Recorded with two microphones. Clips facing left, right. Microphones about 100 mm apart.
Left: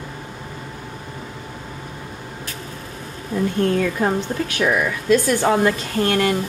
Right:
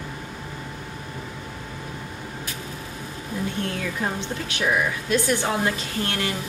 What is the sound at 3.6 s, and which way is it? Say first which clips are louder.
Speech: left 11 dB; 50° left (ahead or behind).